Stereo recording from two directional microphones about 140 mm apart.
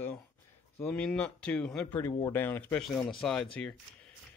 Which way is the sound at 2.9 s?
5° left (ahead or behind).